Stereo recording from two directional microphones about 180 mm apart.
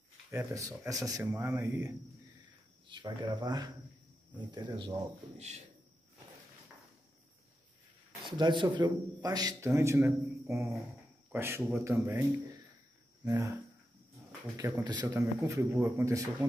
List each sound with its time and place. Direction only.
0.3 s speech: 15° right (ahead or behind)
2.9 s a man's voice: 25° right (ahead or behind)
8.3 s a man's voice: 25° right (ahead or behind)
14.6 s speech: 20° right (ahead or behind)